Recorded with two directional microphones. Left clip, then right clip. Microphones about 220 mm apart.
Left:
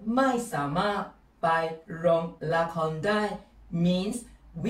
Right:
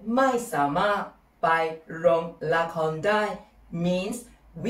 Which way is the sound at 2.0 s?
5° left (ahead or behind).